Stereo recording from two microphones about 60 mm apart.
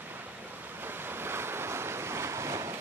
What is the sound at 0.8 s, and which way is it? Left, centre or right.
Waves, right.